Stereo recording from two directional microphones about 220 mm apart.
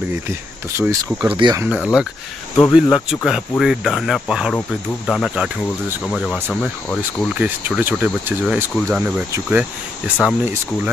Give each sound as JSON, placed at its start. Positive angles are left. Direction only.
{"t": 0.7, "sound": "speech", "side_deg": -10}
{"t": 1.3, "sound": "speech", "side_deg": -20}
{"t": 1.6, "sound": "speech", "side_deg": -5}
{"t": 8.7, "sound": "speech", "side_deg": 0}
{"t": 9.0, "sound": "speech", "side_deg": -10}